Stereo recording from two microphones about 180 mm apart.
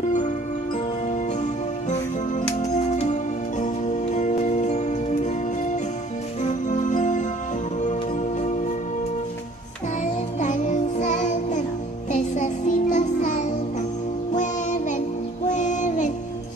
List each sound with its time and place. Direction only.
1.0 s music: 40° left (ahead or behind)
10.4 s music: 45° left (ahead or behind)
14.3 s child singing: 45° left (ahead or behind)